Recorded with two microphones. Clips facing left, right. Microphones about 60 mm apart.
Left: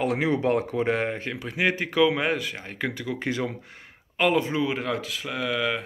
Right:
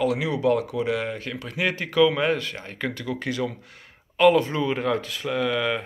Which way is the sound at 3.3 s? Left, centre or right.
Left.